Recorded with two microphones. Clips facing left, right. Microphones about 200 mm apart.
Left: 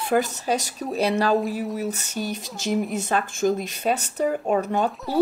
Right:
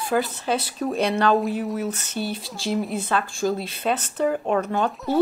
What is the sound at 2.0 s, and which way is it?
Speech, 15° left (ahead or behind).